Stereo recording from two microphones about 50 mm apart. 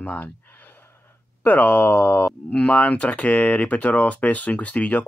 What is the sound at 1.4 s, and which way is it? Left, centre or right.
Speech, left.